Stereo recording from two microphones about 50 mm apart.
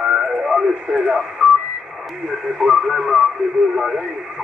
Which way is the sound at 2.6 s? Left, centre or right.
Centre.